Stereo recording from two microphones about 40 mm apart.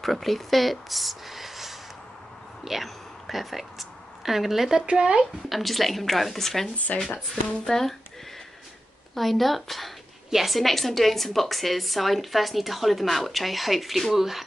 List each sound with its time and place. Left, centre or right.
0.0 s speech: centre
4.8 s speech: right
5.5 s a woman's voice: centre
6.9 s speech: left
7.6 s speech: centre
9.1 s a woman's voice: centre